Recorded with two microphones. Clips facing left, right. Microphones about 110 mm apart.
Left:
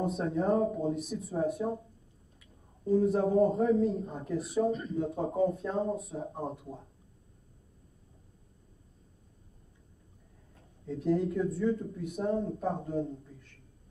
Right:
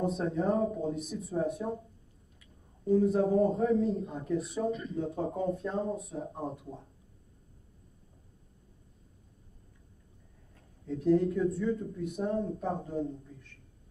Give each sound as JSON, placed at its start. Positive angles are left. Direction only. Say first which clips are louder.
{"t": 0.0, "sound": "speech", "louder": "even", "side_deg": 0}
{"t": 2.8, "sound": "speech", "louder": "right 1 dB", "side_deg": 0}
{"t": 4.6, "sound": "speech", "louder": "left 2 dB", "side_deg": 35}
{"t": 4.9, "sound": "speech", "louder": "left 2 dB", "side_deg": 0}
{"t": 10.9, "sound": "speech", "louder": "right 3 dB", "side_deg": 0}